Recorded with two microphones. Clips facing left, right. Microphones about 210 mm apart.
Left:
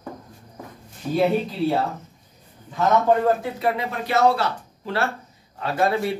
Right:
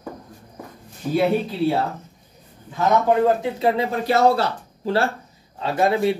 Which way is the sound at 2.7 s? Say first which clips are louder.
Right 1 dB; 15° right (ahead or behind).